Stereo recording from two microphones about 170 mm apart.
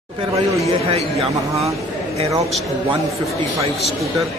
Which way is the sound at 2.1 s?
35° right (ahead or behind).